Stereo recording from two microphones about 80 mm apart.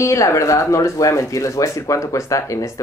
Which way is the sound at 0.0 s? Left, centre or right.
Left.